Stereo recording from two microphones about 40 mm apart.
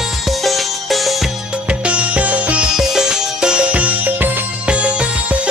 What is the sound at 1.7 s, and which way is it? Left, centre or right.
Music, right.